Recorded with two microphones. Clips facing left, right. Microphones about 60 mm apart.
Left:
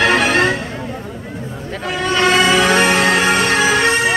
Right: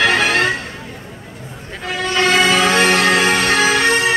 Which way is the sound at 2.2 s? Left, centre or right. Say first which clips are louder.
Left 1 dB; centre.